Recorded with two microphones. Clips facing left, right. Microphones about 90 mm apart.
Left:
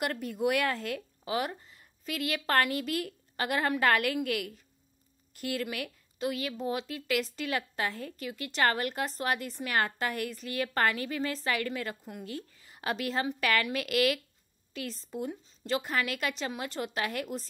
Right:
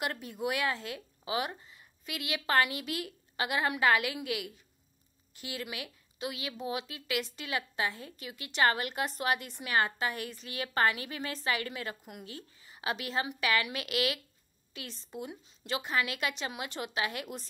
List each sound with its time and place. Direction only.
0.5 s a woman's voice: 50° left (ahead or behind)